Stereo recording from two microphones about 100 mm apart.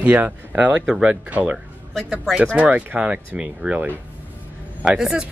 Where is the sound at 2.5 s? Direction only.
15° right (ahead or behind).